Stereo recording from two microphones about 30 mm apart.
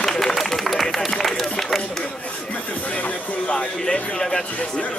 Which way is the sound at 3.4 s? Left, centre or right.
Left.